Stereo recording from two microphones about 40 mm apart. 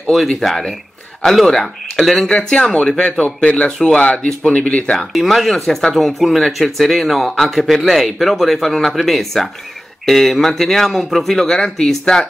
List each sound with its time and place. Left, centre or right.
0.1 s speech: centre
2.2 s speech: left
3.0 s a man's voice: left
4.2 s speech: centre
4.5 s a man's voice: left
4.9 s speech: centre